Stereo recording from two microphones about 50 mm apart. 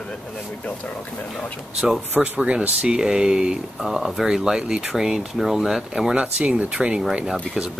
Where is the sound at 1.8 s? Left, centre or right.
Centre.